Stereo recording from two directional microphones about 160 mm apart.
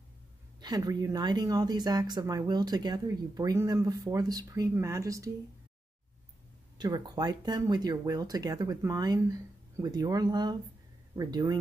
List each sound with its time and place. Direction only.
0.6 s speech: 25° right (ahead or behind)
6.8 s speech: 25° right (ahead or behind)